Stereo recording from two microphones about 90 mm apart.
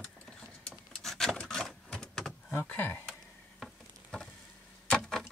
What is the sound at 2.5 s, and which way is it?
Speech, 20° left (ahead or behind).